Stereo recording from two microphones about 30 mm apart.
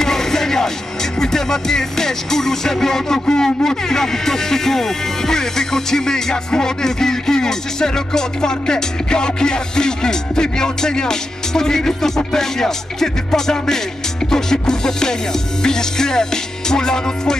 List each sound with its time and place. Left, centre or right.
0.0 s music: centre